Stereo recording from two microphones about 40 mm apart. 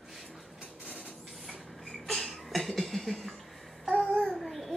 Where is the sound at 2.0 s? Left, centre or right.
Centre.